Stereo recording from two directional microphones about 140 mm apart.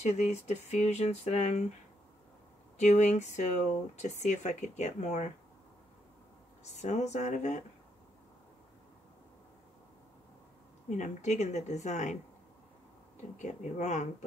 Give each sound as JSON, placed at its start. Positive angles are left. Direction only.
{"t": 0.0, "sound": "speech", "side_deg": 50}
{"t": 2.8, "sound": "speech", "side_deg": 55}
{"t": 6.8, "sound": "speech", "side_deg": 55}
{"t": 10.9, "sound": "speech", "side_deg": 55}
{"t": 13.4, "sound": "speech", "side_deg": 55}